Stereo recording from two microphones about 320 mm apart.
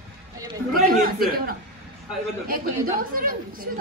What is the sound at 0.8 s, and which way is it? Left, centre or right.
Chatter, right.